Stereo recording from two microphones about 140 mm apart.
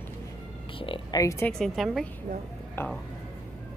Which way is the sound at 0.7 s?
35° left (ahead or behind).